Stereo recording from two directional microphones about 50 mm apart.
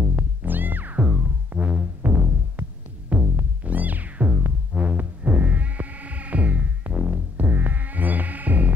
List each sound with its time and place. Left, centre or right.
0.1 s music: right